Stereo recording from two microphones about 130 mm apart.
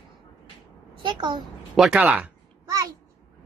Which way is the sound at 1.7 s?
5° right (ahead or behind).